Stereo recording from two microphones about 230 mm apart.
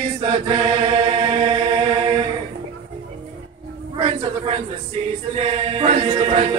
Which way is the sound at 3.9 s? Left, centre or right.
Right.